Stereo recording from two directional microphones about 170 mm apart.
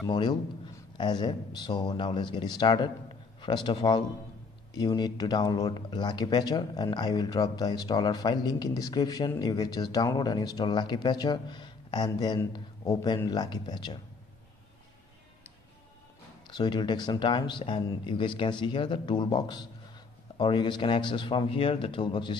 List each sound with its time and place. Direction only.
0.0 s speech: 25° left (ahead or behind)
16.4 s speech: 25° left (ahead or behind)